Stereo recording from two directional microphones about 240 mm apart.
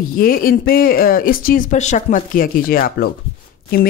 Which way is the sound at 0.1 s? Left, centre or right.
Left.